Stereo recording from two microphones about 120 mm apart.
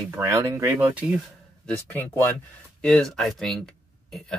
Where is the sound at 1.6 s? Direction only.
15° left (ahead or behind).